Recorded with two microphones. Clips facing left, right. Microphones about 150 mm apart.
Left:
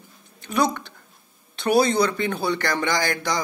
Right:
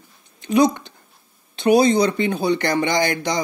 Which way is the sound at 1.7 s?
15° right (ahead or behind).